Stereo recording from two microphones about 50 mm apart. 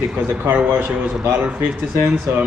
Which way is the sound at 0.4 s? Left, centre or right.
Right.